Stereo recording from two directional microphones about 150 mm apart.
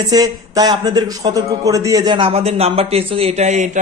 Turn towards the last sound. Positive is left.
turn(degrees=-50)  # may be behind; listen again after turning